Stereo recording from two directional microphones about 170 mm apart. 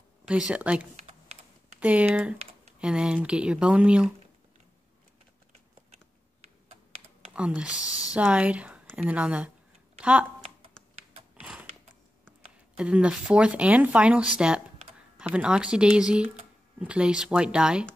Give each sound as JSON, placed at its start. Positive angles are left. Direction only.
{"t": 0.3, "sound": "speech", "side_deg": -5}
{"t": 0.9, "sound": "computer keyboard", "side_deg": -40}
{"t": 1.8, "sound": "speech", "side_deg": -10}
{"t": 7.3, "sound": "speech", "side_deg": -5}
{"t": 9.9, "sound": "a sound", "side_deg": -5}
{"t": 11.3, "sound": "a sound", "side_deg": -5}
{"t": 12.7, "sound": "speech", "side_deg": -5}